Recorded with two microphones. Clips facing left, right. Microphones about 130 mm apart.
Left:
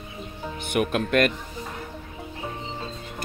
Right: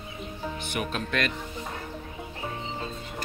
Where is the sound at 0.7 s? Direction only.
55° left (ahead or behind).